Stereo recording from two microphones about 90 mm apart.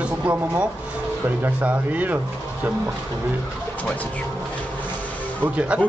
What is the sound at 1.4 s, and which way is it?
Speech, 15° right (ahead or behind).